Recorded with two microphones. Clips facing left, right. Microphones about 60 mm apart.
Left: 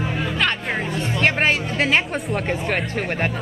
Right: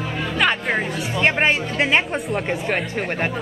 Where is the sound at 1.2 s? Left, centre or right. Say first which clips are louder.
Right 1 dB; centre.